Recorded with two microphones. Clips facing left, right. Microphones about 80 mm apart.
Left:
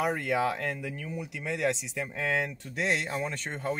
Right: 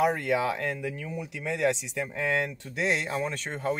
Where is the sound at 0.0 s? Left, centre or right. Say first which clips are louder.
Right 3 dB; centre.